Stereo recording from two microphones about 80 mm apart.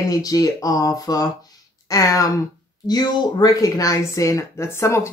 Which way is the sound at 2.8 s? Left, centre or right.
Left.